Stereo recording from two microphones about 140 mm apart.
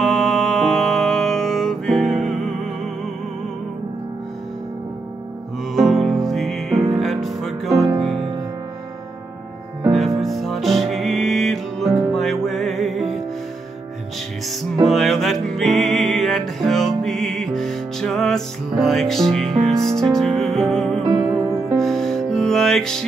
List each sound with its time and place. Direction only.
0.0 s music: 5° left (ahead or behind)
5.8 s music: centre (ahead or behind)
9.8 s music: centre (ahead or behind)
14.9 s music: centre (ahead or behind)
21.0 s music: 35° right (ahead or behind)
21.7 s music: centre (ahead or behind)